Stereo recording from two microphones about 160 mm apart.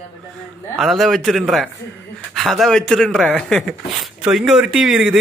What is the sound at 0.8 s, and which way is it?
Speech, centre (ahead or behind).